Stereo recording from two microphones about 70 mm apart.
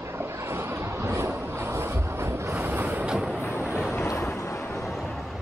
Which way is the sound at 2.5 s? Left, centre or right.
Right.